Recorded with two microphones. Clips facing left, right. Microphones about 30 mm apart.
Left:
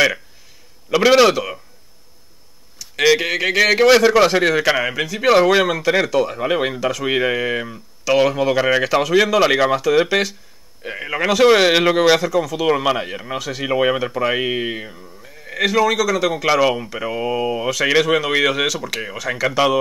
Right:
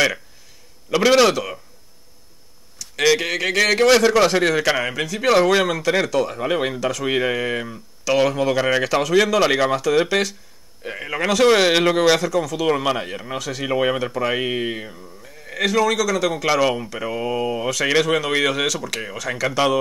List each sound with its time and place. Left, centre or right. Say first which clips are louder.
0.8 s speech: left 2 dB; centre
2.8 s speech: left 2 dB; centre